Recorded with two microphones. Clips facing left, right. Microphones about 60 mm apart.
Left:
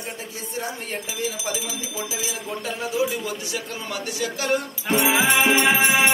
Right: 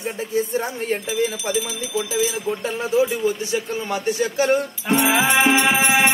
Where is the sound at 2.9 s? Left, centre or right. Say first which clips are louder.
Right 7 dB; right.